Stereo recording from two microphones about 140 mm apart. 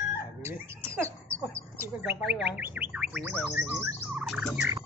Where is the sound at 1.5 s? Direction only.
15° right (ahead or behind).